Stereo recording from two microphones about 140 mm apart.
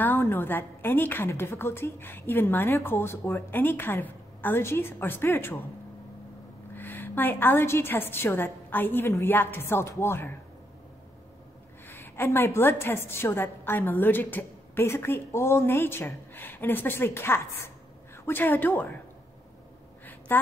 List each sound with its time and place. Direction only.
0.0 s a woman's voice: 15° left (ahead or behind)
6.7 s a woman's voice: 15° left (ahead or behind)
11.9 s a woman's voice: 15° left (ahead or behind)
20.3 s a woman's voice: 15° left (ahead or behind)